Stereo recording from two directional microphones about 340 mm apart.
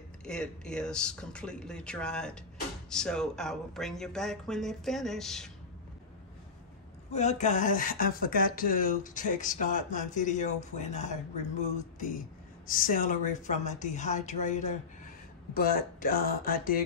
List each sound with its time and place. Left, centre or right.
0.2 s speech: centre
7.1 s speech: centre
12.6 s speech: left